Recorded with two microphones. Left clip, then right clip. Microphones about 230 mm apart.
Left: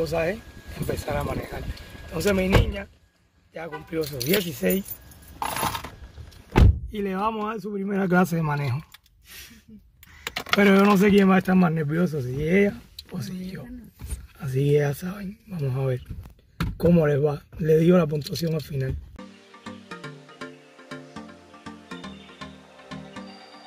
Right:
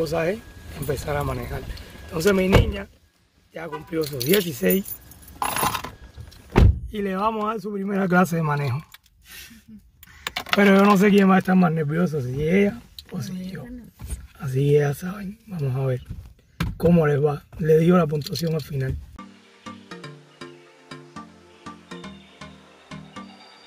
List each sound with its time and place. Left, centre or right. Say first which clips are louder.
0.0 s speech: right 1 dB; centre
3.5 s speech: right 2 dB; centre
5.4 s coin: right 3 dB; right
6.9 s speech: right 2 dB; centre
10.3 s computer keyboard: right 1 dB; right
10.6 s speech: right 2 dB; centre